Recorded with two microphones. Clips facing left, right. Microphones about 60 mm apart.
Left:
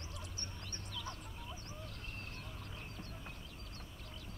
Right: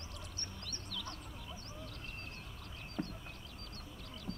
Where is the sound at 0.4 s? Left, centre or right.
Centre.